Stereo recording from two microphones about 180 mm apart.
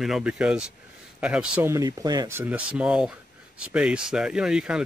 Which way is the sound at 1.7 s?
20° right (ahead or behind).